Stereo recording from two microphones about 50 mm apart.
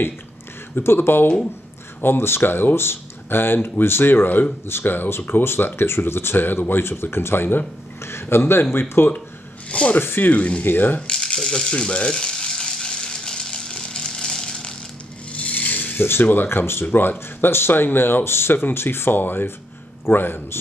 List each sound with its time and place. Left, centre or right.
0.8 s speech: left
8.0 s speech: left
9.7 s speech: left
9.9 s speech: left
10.3 s speech: left
10.6 s speech: left
11.0 s rattle: centre
11.7 s frying: left
15.3 s rub: left
16.9 s speech: left